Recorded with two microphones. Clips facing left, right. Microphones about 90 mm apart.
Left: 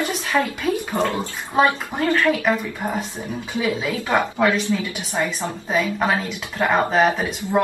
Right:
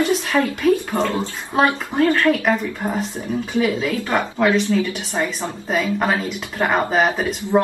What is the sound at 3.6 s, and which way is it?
Speech, 15° left (ahead or behind).